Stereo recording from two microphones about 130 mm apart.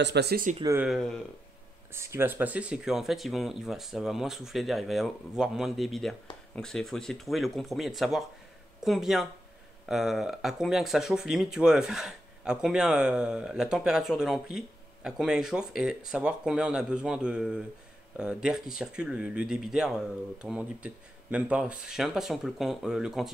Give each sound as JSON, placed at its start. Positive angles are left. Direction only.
{"t": 0.5, "sound": "speech", "side_deg": -70}
{"t": 0.8, "sound": "speech", "side_deg": 0}
{"t": 1.9, "sound": "speech", "side_deg": -20}